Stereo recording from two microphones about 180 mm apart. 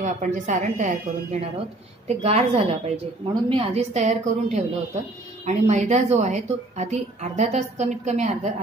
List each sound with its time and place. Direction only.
0.0 s a woman's voice: 45° right (ahead or behind)